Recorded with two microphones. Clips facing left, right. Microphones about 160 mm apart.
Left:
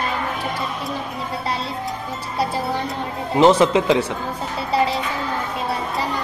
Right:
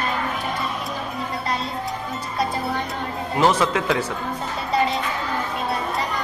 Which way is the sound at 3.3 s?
25° left (ahead or behind).